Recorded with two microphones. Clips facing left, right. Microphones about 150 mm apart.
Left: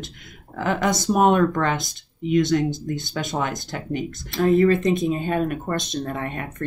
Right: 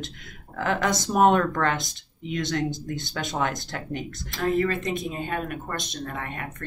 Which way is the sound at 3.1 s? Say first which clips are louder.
Even; 5° left (ahead or behind).